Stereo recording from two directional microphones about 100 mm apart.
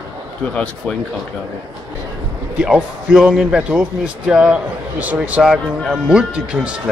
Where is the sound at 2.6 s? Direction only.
10° right (ahead or behind).